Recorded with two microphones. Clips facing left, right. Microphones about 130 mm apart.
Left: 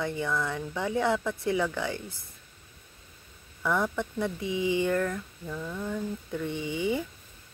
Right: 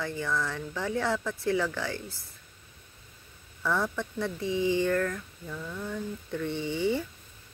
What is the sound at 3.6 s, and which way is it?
Speech, 15° left (ahead or behind).